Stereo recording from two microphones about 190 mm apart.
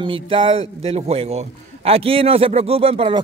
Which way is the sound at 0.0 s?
25° right (ahead or behind).